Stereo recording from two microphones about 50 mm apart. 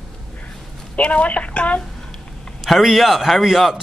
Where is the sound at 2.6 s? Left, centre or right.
Centre.